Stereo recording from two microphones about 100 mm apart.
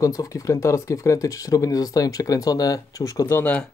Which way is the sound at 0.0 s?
35° left (ahead or behind).